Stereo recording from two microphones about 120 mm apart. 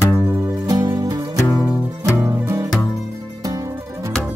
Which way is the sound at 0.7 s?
30° right (ahead or behind).